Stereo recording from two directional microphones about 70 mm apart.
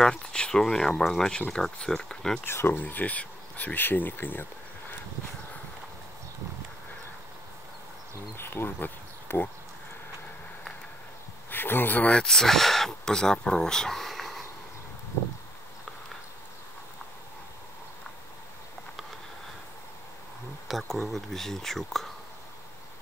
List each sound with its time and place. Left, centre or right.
0.0 s speech: centre
2.4 s speech: left
2.8 s speech: left
8.4 s insect: left
11.5 s speech: left
12.2 s speech: centre
20.9 s speech: centre